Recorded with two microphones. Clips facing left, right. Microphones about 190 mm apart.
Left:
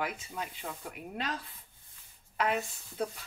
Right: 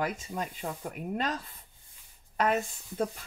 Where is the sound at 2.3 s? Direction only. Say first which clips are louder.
Right 3 dB; 45° right (ahead or behind).